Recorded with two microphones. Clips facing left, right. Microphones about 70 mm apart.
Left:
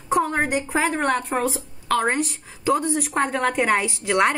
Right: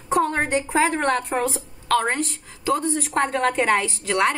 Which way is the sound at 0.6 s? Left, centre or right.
Centre.